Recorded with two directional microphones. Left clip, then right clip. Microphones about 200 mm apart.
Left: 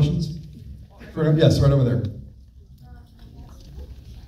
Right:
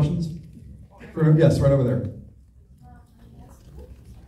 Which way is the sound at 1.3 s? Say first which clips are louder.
Even; 35° left (ahead or behind).